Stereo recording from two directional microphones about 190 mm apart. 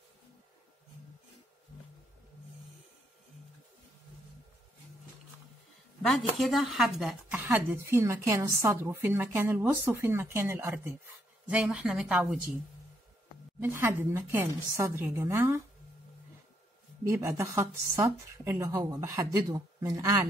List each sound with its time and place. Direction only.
6.0 s a woman's voice: centre (ahead or behind)
13.6 s a woman's voice: 15° right (ahead or behind)
17.0 s a woman's voice: 15° right (ahead or behind)